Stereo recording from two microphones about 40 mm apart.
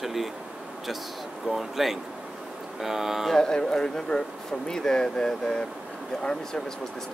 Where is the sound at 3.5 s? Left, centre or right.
Left.